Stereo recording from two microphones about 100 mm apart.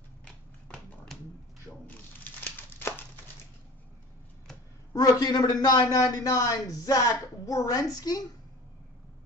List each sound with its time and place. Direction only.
1.7 s water: 15° left (ahead or behind)
4.9 s a man's voice: 40° left (ahead or behind)